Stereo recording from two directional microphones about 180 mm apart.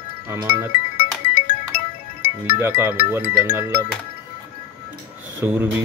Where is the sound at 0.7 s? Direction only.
50° left (ahead or behind).